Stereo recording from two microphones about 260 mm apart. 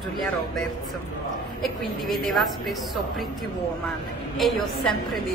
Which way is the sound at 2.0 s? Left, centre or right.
Centre.